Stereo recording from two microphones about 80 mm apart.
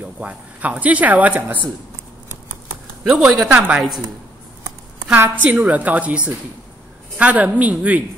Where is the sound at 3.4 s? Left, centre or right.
Centre.